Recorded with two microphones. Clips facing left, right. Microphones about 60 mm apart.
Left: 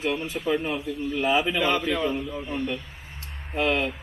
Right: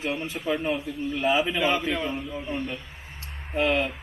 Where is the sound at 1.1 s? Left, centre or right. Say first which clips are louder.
Left 1 dB; centre.